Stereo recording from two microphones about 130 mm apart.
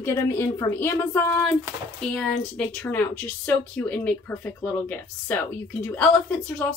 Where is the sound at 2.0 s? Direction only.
5° left (ahead or behind).